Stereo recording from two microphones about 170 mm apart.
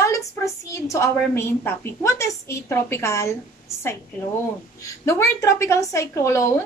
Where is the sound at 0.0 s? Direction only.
20° left (ahead or behind).